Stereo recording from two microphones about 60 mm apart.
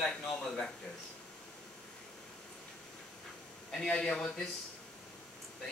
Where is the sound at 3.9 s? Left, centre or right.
Centre.